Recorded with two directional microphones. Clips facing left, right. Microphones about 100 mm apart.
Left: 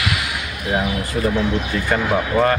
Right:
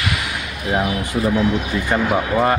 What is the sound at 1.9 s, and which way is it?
Speech, 20° right (ahead or behind).